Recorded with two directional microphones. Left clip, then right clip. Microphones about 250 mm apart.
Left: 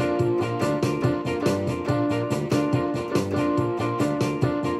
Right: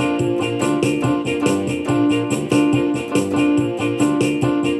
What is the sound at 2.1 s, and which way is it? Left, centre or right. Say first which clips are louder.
Music: right 6 dB; centre.